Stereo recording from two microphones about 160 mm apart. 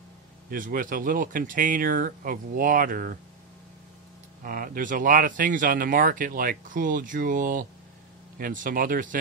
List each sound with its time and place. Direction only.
0.5 s speech: 60° right (ahead or behind)
4.4 s speech: 60° right (ahead or behind)